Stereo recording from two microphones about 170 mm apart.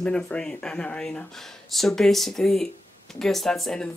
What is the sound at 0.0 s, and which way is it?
Speech, 5° left (ahead or behind).